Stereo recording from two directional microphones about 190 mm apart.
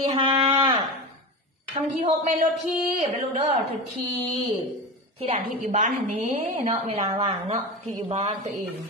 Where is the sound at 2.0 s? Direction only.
45° right (ahead or behind).